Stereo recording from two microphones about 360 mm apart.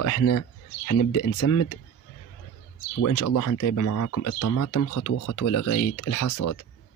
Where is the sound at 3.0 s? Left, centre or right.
Left.